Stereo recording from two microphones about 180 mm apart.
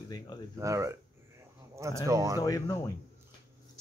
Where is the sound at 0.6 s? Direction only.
15° right (ahead or behind).